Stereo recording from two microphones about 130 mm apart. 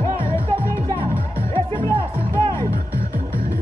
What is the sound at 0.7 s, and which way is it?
Music, 20° left (ahead or behind).